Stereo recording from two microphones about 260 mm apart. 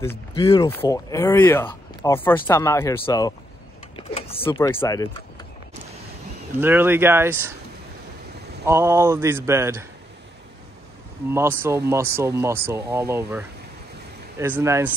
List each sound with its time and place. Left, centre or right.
0.3 s speech: centre
3.9 s a sound: left
4.5 s speech: centre
6.6 s speech: centre
8.6 s speech: centre
11.2 s speech: centre